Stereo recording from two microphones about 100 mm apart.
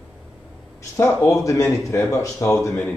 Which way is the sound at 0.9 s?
30° left (ahead or behind).